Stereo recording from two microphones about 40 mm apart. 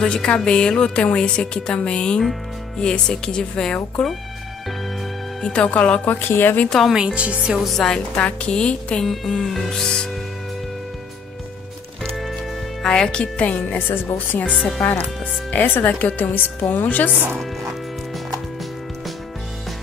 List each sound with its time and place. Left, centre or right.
0.0 s speech: left
5.4 s speech: left
5.7 s a woman's voice: left
6.2 s speech: left
6.9 s speech: centre
7.7 s music: centre
8.2 s a woman's voice: left
9.0 s music: centre
12.8 s speech: centre
13.4 s a woman's voice: left
15.6 s a woman's voice: left